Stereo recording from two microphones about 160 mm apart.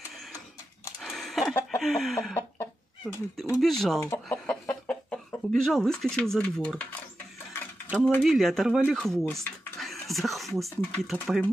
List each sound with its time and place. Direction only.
1.0 s a sound: centre (ahead or behind)
1.8 s speech: centre (ahead or behind)
2.3 s chicken: 15° left (ahead or behind)
3.6 s speech: centre (ahead or behind)
4.0 s speech: 15° left (ahead or behind)
8.0 s speech: centre (ahead or behind)